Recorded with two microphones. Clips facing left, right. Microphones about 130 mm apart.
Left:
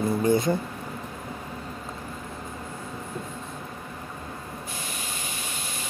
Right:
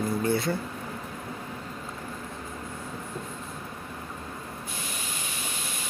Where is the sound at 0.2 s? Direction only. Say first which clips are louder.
Left 6 dB; 15° left (ahead or behind).